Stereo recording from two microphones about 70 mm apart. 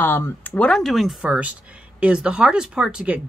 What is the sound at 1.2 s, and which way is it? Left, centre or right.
Speech, centre.